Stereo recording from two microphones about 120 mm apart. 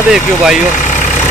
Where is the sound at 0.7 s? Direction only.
90° left.